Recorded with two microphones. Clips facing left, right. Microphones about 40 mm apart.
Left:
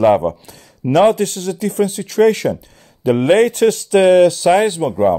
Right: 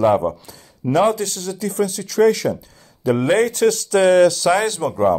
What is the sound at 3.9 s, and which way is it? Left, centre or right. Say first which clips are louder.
Speech: left 3 dB; left.